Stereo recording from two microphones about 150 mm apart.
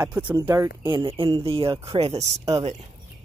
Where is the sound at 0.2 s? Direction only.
30° right (ahead or behind).